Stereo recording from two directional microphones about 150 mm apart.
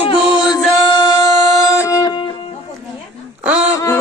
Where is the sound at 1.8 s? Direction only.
25° left (ahead or behind).